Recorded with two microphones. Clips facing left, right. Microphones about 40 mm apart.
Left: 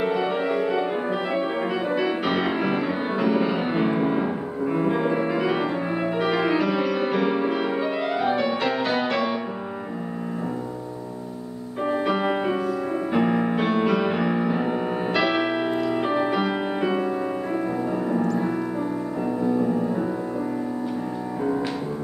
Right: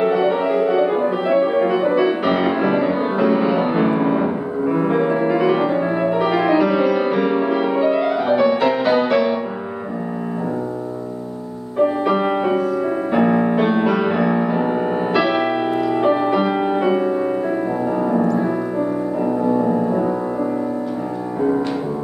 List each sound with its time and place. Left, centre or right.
0.0 s music: centre
11.8 s music: centre
21.4 s music: right